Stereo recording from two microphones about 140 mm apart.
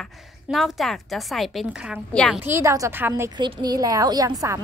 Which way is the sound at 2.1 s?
5° left (ahead or behind).